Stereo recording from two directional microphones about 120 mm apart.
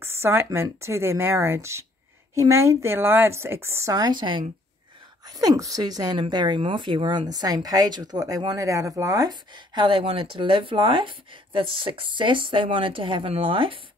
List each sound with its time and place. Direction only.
0.0 s speech: 20° right (ahead or behind); by 4.5 s 40° right (ahead or behind)
5.4 s a woman's voice: 30° right (ahead or behind); by 13.7 s 50° right (ahead or behind)